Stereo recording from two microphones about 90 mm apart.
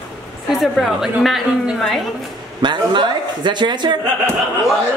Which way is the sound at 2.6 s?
60° right (ahead or behind).